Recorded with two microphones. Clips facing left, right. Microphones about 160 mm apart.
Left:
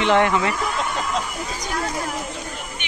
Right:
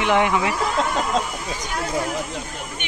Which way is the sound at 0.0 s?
10° right (ahead or behind).